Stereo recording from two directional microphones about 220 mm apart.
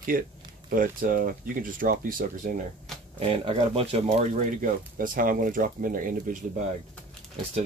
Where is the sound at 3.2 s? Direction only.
25° right (ahead or behind).